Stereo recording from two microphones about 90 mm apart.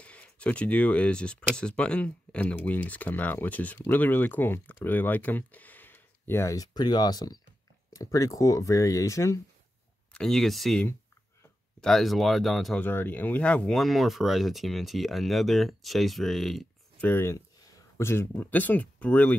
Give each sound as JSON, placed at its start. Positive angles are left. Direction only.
{"t": 0.0, "sound": "speech", "side_deg": 15}
{"t": 10.1, "sound": "speech", "side_deg": 5}
{"t": 11.8, "sound": "speech", "side_deg": 0}
{"t": 12.7, "sound": "speech", "side_deg": 20}
{"t": 13.7, "sound": "speech", "side_deg": 0}
{"t": 17.0, "sound": "speech", "side_deg": 20}